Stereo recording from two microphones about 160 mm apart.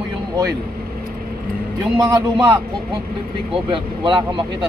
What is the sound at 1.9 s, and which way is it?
Speech, 25° right (ahead or behind).